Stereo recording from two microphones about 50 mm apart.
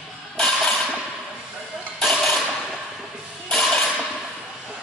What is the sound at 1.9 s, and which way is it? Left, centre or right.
Mechanisms, centre.